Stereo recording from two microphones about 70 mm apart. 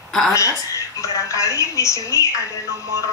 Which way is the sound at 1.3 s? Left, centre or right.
Left.